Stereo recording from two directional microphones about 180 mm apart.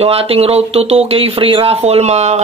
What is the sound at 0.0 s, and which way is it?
Speech, 35° right (ahead or behind).